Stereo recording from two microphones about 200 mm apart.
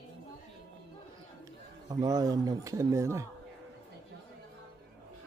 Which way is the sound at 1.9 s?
15° right (ahead or behind).